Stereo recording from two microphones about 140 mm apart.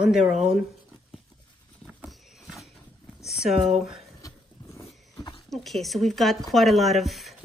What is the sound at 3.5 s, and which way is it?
Speech, 55° right (ahead or behind).